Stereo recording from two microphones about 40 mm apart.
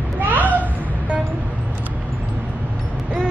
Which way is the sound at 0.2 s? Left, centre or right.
Right.